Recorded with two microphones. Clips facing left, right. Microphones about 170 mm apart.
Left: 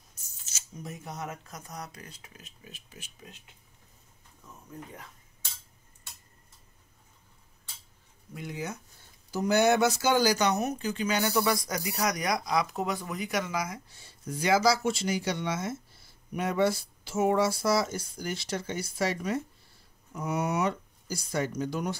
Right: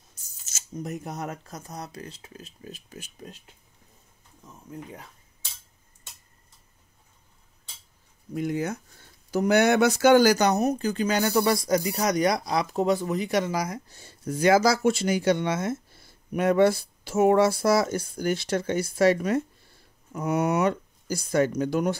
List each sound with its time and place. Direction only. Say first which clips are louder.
0.1 s a sound: right 3 dB; 45° right (ahead or behind)
0.8 s speech: right 6 dB; 65° right (ahead or behind)
1.1 s speech: right 4 dB; 35° right (ahead or behind)
8.4 s speech: right 9 dB; 55° right (ahead or behind)
9.3 s speech: right 3 dB; 65° right (ahead or behind)